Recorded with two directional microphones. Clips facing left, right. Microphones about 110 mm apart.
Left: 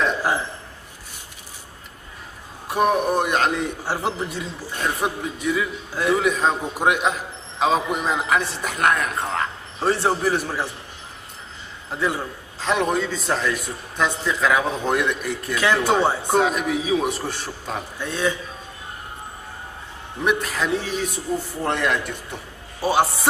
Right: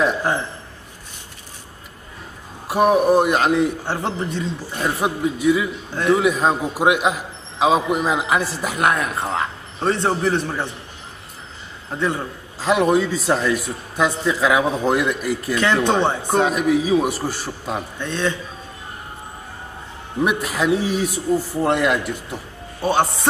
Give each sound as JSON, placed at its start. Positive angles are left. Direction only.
{"t": 2.7, "sound": "a man's voice", "side_deg": -5}
{"t": 4.7, "sound": "a man's voice", "side_deg": -5}
{"t": 11.9, "sound": "a man's voice", "side_deg": 5}
{"t": 17.9, "sound": "a man's voice", "side_deg": 10}
{"t": 20.2, "sound": "a man's voice", "side_deg": -5}